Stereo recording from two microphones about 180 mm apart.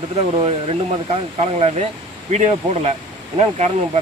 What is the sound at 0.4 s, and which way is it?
Speech, 30° right (ahead or behind).